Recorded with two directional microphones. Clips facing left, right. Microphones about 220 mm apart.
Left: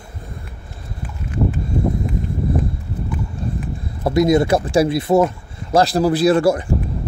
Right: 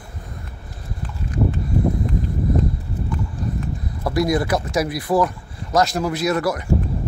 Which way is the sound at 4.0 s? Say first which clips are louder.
Left 5 dB; 25° left (ahead or behind).